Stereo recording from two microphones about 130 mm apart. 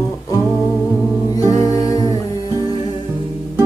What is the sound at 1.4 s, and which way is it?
A capella, 25° left (ahead or behind).